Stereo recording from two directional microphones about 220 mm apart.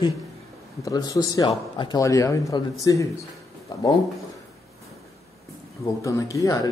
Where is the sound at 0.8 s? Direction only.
15° left (ahead or behind).